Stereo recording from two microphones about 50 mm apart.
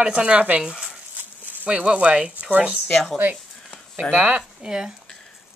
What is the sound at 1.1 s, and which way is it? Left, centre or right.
Speech, right.